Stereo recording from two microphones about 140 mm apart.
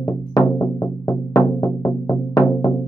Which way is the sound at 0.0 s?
25° left (ahead or behind).